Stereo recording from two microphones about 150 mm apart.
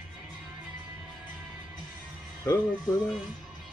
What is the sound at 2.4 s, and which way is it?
Speech, 20° left (ahead or behind).